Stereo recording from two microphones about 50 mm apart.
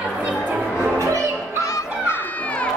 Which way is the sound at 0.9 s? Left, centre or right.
Right.